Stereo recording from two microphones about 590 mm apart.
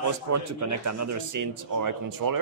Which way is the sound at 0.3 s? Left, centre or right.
Right.